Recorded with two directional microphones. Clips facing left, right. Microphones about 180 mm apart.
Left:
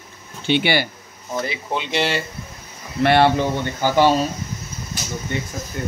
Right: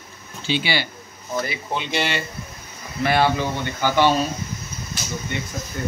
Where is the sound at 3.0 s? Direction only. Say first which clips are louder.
Left 4 dB; 65° left (ahead or behind).